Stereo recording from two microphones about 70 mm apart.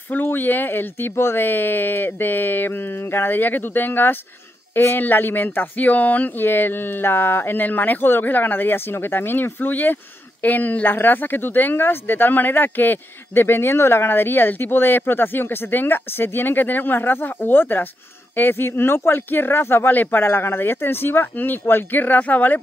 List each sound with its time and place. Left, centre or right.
0.1 s speech: left